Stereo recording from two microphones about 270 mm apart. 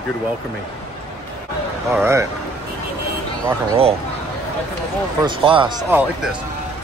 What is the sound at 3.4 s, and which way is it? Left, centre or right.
Speech, right.